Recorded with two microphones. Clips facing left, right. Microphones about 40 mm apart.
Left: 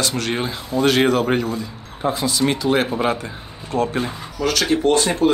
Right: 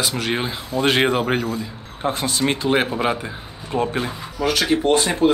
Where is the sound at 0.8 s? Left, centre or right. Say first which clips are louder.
Left 2 dB; right.